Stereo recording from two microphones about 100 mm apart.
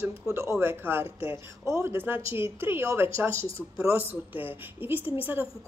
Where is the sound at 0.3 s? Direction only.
25° right (ahead or behind).